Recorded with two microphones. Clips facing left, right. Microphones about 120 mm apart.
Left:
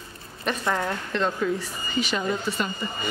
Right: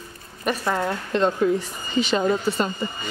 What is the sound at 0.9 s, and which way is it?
Speech, 20° right (ahead or behind).